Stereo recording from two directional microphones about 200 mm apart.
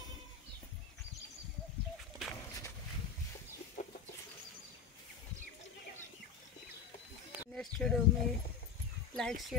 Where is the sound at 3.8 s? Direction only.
40° left (ahead or behind).